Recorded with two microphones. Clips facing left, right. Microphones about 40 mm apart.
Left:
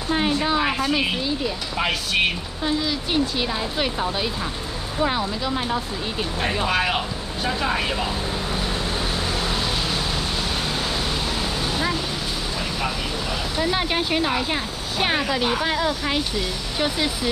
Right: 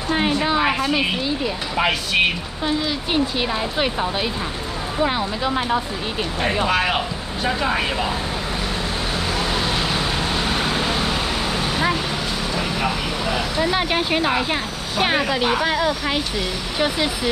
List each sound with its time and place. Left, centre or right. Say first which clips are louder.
0.1 s speech: right 2 dB; centre
6.4 s speech: right 3 dB; centre
9.4 s a sound: right 3 dB; right
10.5 s vehicle: right 4 dB; right
13.6 s speech: right 1 dB; centre